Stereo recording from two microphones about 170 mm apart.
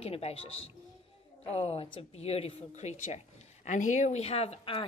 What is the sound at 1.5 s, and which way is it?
A woman's voice, 35° left (ahead or behind).